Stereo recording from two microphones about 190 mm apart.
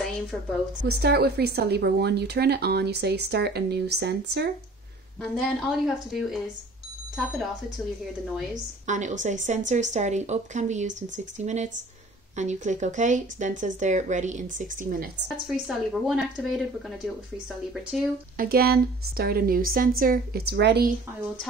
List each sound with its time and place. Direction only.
0.7 s a woman's voice: 55° right (ahead or behind)
5.2 s speech: centre (ahead or behind)
8.8 s speech: 40° right (ahead or behind)
15.4 s speech: 5° right (ahead or behind)
18.4 s a woman's voice: 50° right (ahead or behind)